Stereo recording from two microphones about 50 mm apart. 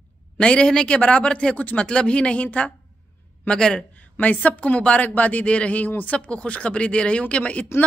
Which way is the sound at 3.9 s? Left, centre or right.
Left.